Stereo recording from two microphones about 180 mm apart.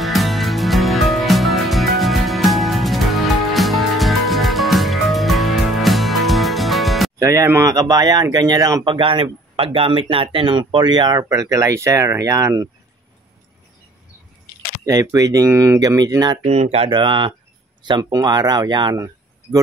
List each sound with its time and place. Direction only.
0.0 s music: centre (ahead or behind)
7.2 s a man's voice: 15° right (ahead or behind)
14.9 s speech: 15° right (ahead or behind)
16.4 s a man's voice: 35° right (ahead or behind)